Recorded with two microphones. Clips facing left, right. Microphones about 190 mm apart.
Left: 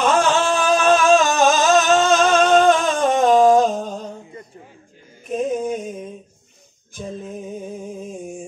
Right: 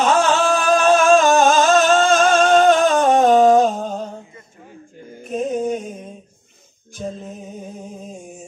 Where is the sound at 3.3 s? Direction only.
55° right (ahead or behind).